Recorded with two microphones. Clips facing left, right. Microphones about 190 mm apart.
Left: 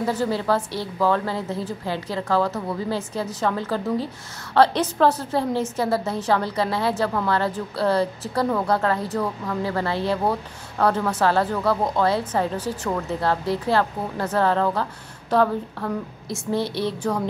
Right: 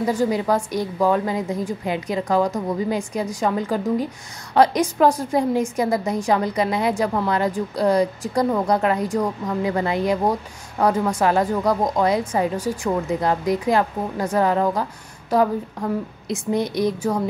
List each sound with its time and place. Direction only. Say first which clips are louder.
0.0 s a woman's voice: right 3 dB; 10° right (ahead or behind)